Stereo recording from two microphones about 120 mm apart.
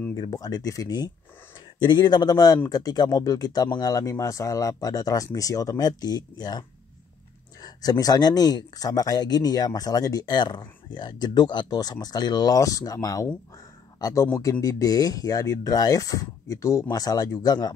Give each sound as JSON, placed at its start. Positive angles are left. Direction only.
{"t": 0.1, "sound": "speech", "side_deg": 30}
{"t": 7.6, "sound": "speech", "side_deg": 30}
{"t": 14.6, "sound": "speech", "side_deg": 30}